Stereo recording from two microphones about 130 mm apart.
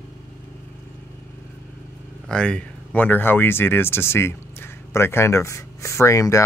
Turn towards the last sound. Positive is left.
turn(degrees=25)  # may be behind; listen again after turning